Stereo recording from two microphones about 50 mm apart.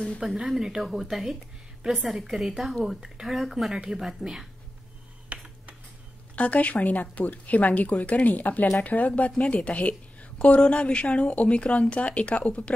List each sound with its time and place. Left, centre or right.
0.2 s speech: centre
5.3 s computer keyboard: right
6.3 s speech: left